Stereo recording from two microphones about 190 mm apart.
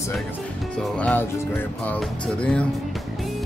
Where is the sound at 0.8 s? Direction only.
5° left (ahead or behind).